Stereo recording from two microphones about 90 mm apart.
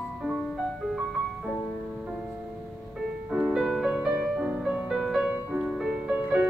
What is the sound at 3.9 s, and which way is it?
Music, 15° right (ahead or behind).